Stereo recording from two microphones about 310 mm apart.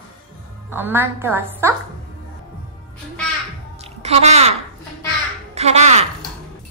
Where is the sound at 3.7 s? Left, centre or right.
Centre.